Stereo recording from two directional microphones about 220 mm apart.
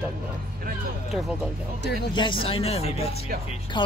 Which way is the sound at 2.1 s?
20° left (ahead or behind).